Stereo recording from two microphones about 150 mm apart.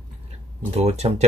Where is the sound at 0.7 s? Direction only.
45° right (ahead or behind).